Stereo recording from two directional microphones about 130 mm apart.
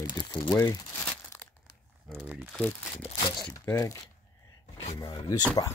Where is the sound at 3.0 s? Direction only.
40° left (ahead or behind).